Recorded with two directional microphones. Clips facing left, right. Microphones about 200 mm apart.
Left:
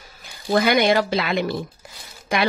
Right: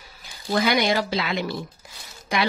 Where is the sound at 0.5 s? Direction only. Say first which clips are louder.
Left 4 dB; 50° left (ahead or behind).